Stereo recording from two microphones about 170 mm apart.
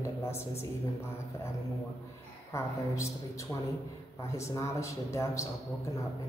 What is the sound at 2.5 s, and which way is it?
Speech, 15° left (ahead or behind).